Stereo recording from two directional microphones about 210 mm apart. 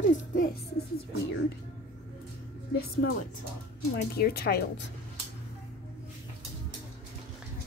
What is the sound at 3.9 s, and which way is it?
Speech, 50° left (ahead or behind).